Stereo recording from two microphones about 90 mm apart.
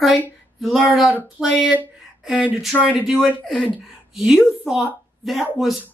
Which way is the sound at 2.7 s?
15° right (ahead or behind).